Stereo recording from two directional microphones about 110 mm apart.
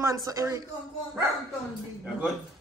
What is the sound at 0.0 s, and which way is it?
Speech, 30° right (ahead or behind).